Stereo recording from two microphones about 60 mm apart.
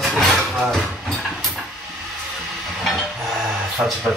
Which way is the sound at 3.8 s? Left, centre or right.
Right.